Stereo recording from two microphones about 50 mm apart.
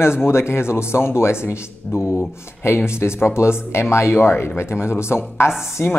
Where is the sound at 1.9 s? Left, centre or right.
Centre.